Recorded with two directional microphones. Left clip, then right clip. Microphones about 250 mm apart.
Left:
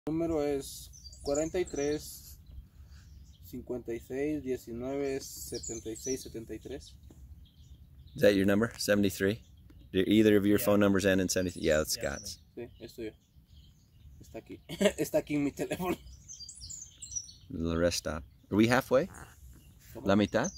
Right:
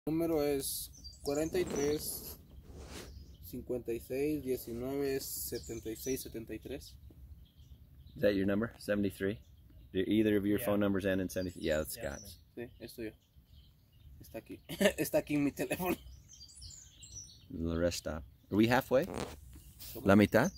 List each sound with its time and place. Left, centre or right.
0.1 s speech: right; by 2.0 s centre
3.4 s speech: centre; by 6.9 s right
8.2 s speech: left
12.5 s speech: right
14.3 s speech: right
17.6 s speech: centre
20.0 s speech: right